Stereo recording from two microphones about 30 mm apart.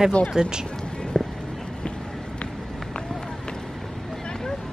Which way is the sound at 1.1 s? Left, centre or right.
Left.